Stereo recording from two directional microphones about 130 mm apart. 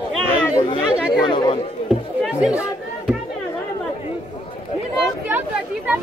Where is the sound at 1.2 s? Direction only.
35° left (ahead or behind).